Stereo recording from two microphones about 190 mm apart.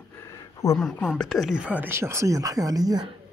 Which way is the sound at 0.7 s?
Centre (ahead or behind).